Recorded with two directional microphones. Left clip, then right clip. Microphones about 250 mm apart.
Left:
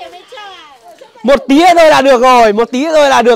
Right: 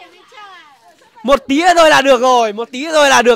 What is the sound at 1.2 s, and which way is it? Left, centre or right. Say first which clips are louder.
A man's voice: left 5 dB; centre.